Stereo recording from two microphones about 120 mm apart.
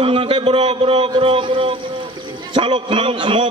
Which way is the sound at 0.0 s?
50° right (ahead or behind).